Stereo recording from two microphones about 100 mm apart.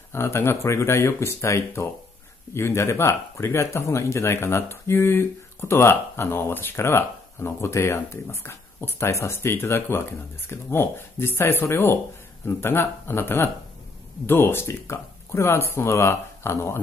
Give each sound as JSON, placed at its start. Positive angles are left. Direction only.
{"t": 0.1, "sound": "speech", "side_deg": 25}